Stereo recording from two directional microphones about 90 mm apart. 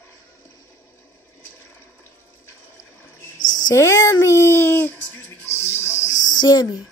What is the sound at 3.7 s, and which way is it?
Speech, 35° left (ahead or behind).